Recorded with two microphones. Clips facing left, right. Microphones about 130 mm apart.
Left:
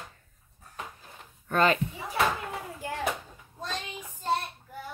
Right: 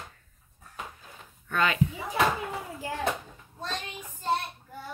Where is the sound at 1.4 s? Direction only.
40° left (ahead or behind).